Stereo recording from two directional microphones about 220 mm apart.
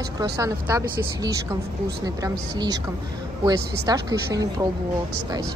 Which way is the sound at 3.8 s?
15° right (ahead or behind).